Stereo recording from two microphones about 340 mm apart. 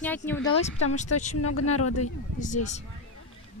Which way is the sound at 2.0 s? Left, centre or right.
Left.